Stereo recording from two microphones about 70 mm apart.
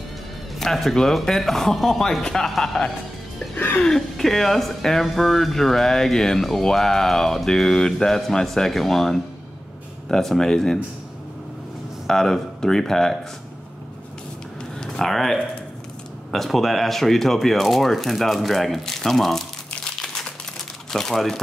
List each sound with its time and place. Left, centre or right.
0.6 s speech: centre
3.5 s music: left
3.8 s speech: centre
12.1 s speech: centre
14.8 s speech: centre